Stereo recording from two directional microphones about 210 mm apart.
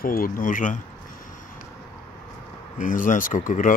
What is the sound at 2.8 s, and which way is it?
Speech, 40° left (ahead or behind).